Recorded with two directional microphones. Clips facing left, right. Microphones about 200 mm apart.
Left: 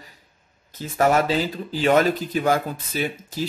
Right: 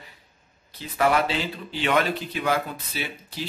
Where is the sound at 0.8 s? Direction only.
45° left (ahead or behind).